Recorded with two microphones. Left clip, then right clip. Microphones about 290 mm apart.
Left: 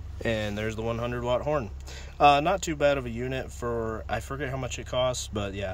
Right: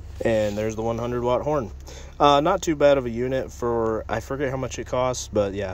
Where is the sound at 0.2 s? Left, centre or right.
Centre.